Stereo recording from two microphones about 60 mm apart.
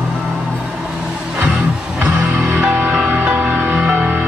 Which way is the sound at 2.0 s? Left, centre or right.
Right.